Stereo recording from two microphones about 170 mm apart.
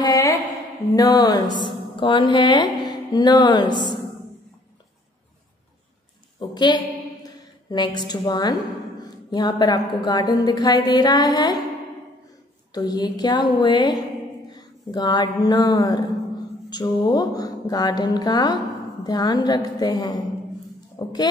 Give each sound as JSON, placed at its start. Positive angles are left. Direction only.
{"t": 0.0, "sound": "a sound", "side_deg": 20}
{"t": 0.9, "sound": "a woman's voice", "side_deg": 20}
{"t": 6.5, "sound": "a woman's voice", "side_deg": 25}
{"t": 12.7, "sound": "a woman's voice", "side_deg": 25}